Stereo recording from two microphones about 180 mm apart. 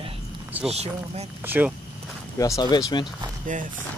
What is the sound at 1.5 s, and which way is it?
Speech, 10° right (ahead or behind).